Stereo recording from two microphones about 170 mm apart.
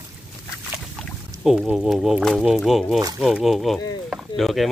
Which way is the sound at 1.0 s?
5° left (ahead or behind).